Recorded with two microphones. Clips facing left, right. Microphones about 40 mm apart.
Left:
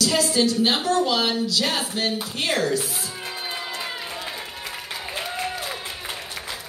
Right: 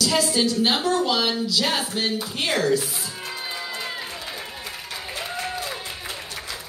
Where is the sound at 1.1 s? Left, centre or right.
Centre.